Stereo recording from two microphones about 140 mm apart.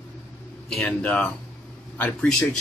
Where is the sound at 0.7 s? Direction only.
5° left (ahead or behind).